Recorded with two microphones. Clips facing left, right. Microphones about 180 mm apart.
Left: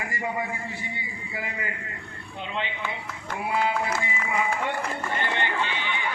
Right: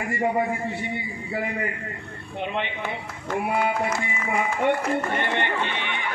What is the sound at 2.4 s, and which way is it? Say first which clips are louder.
A man's voice: right 3 dB; 55° right (ahead or behind).